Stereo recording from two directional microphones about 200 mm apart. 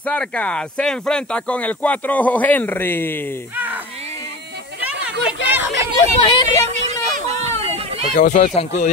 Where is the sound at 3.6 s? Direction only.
10° right (ahead or behind).